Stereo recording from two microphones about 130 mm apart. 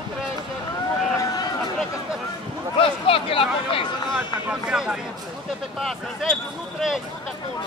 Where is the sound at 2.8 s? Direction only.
45° left (ahead or behind).